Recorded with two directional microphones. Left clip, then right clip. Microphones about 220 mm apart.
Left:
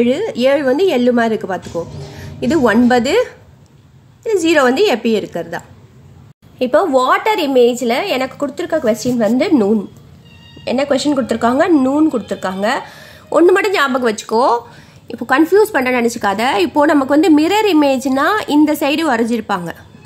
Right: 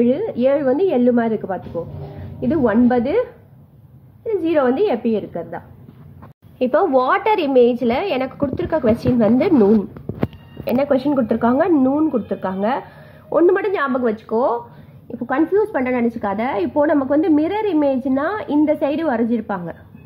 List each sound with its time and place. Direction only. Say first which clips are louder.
0.0 s a woman's voice: left 3 dB; 15° left (ahead or behind)
4.3 s a woman's voice: left 5 dB; 25° left (ahead or behind)
6.6 s a woman's voice: left 3 dB; 15° left (ahead or behind)